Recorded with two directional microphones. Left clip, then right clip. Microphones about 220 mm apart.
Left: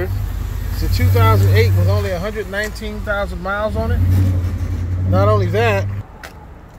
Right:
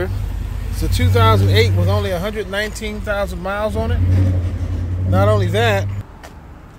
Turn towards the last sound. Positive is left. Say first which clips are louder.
# even
turn(degrees=-5)  # may be behind; listen again after turning